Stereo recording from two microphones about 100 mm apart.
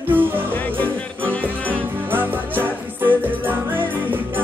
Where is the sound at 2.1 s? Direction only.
20° right (ahead or behind).